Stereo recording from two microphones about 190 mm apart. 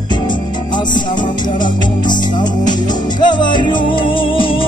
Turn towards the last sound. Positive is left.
turn(degrees=30)  # may be behind; listen again after turning